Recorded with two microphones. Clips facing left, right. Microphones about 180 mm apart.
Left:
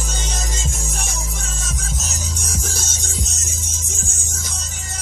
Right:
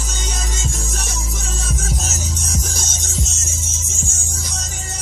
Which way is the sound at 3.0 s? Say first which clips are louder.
Right 2 dB; 15° left (ahead or behind).